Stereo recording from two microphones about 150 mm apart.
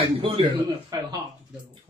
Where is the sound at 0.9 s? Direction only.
25° right (ahead or behind).